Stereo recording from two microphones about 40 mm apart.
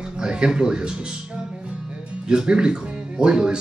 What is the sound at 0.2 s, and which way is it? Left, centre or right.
Speech, right.